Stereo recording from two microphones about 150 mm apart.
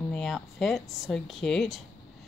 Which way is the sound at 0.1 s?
5° left (ahead or behind).